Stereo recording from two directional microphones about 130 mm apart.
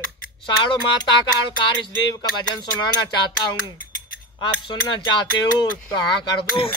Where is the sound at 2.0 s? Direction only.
35° left (ahead or behind).